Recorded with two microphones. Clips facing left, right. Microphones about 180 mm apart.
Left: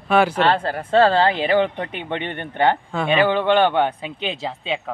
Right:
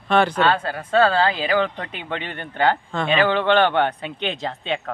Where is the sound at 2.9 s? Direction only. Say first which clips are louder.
Left 1 dB; 5° left (ahead or behind).